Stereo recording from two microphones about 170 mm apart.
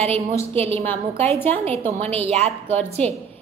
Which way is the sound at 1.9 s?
35° right (ahead or behind).